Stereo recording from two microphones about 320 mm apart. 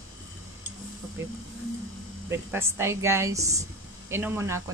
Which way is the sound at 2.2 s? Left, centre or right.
Centre.